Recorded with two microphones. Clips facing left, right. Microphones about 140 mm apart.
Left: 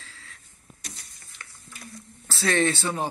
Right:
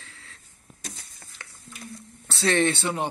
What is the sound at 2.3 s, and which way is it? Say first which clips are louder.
Speech: right 1 dB; 25° right (ahead or behind).